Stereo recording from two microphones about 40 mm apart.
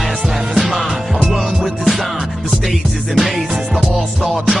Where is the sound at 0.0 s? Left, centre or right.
Centre.